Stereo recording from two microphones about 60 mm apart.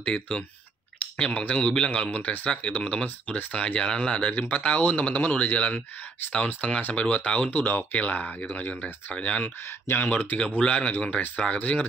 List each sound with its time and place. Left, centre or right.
0.0 s speech: centre
9.8 s speech: left
10.6 s speech: centre